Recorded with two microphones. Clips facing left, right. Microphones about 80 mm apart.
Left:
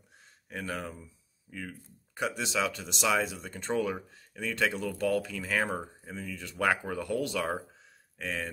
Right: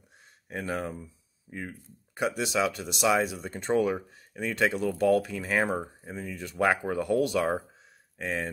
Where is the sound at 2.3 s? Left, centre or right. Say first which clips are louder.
Right 4 dB; centre.